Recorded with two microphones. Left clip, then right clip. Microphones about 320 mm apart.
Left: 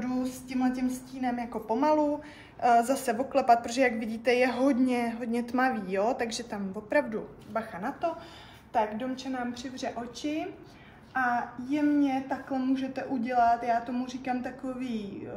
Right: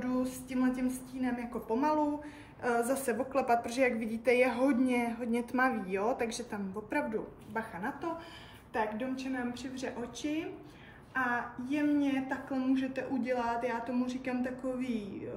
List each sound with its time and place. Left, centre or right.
0.0 s a sound: centre
1.8 s a woman's voice: centre
11.7 s a woman's voice: centre